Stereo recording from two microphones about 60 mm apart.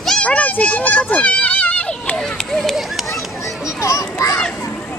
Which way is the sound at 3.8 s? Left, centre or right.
Left.